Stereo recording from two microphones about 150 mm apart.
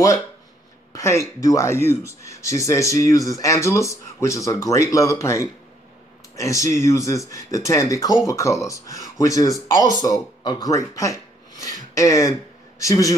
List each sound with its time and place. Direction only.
0.9 s speech: 20° left (ahead or behind)